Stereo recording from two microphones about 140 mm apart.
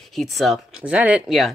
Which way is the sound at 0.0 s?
Centre (ahead or behind).